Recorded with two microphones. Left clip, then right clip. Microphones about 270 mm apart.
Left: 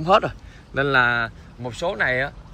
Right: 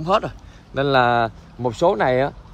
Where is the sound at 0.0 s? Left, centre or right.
Centre.